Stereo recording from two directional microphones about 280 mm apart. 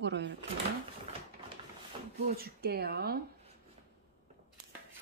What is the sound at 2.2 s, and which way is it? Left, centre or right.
Speech, right.